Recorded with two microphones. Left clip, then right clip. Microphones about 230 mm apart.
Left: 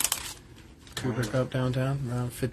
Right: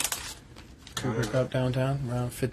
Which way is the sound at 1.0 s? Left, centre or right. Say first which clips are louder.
Right 1 dB; centre.